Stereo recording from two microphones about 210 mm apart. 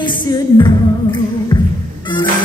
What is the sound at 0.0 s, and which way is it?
Music, 20° left (ahead or behind).